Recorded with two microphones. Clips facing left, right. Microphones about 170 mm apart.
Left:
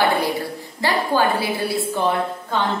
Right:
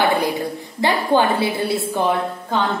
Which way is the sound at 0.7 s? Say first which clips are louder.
Right 3 dB; 20° right (ahead or behind).